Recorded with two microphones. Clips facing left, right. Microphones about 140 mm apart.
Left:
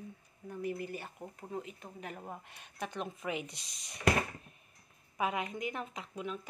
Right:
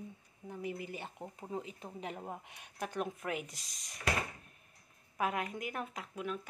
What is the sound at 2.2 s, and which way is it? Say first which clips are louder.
Speech: right 1 dB; 15° right (ahead or behind).